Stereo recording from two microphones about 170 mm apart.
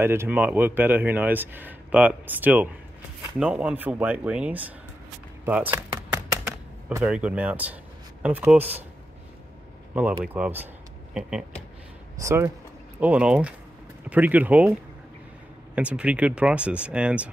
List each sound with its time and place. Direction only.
0.0 s speech: 15° right (ahead or behind)
7.1 s speech: 5° right (ahead or behind)
10.2 s speech: 5° right (ahead or behind)
12.2 s speech: 20° right (ahead or behind)
13.0 s speech: 5° right (ahead or behind)